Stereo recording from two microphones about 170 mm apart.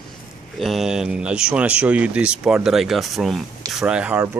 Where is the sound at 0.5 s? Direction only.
Centre (ahead or behind).